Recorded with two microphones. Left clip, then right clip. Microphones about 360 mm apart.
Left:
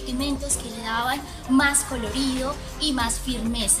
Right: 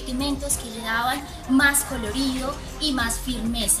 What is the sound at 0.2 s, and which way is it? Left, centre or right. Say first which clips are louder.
A child's voice: right 1 dB; centre.